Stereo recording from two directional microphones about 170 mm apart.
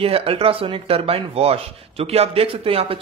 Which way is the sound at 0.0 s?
35° right (ahead or behind).